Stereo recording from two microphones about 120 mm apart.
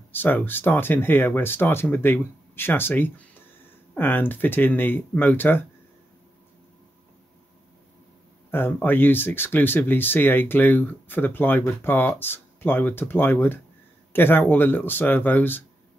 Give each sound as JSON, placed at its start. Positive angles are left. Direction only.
{"t": 0.1, "sound": "speech", "side_deg": 15}
{"t": 8.5, "sound": "speech", "side_deg": 15}